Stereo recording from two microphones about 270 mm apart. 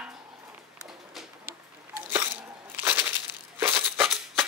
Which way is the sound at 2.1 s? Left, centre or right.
Centre.